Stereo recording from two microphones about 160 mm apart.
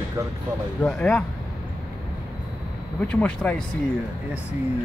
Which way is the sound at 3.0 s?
10° left (ahead or behind).